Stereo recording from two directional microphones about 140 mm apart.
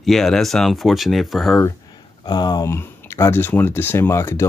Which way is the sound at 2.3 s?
30° left (ahead or behind).